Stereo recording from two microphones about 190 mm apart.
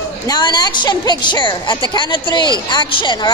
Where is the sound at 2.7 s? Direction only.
25° left (ahead or behind).